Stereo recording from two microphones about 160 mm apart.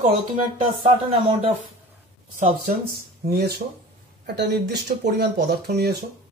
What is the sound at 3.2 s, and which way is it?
Speech, 80° right.